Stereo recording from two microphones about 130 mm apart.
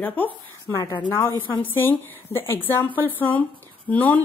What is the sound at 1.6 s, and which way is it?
A woman's voice, 15° left (ahead or behind).